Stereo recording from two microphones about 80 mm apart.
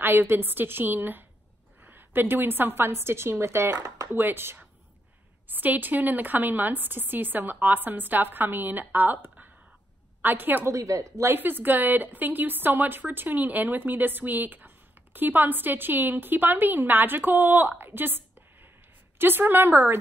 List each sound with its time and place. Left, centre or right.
0.0 s a woman's voice: right
4.1 s a woman's voice: right
10.7 s speech: right
11.3 s a woman's voice: right